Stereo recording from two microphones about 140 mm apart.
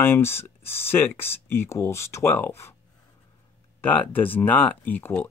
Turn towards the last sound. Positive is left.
turn(degrees=10)  # may be behind; listen again after turning